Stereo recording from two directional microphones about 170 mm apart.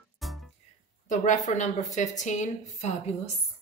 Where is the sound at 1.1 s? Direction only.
45° left (ahead or behind).